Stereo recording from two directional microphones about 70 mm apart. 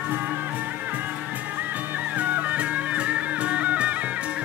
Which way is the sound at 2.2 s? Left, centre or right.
Right.